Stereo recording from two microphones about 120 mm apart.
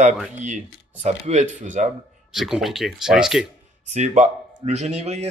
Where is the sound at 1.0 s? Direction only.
70° right (ahead or behind); by 1.9 s 90° right.